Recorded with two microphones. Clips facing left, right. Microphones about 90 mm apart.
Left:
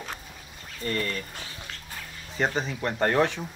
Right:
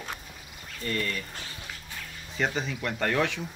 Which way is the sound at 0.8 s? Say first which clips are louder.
Left 2 dB; 35° left (ahead or behind).